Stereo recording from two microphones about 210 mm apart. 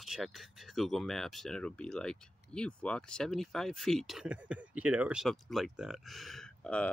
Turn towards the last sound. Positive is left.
turn(degrees=5)  # may be behind; listen again after turning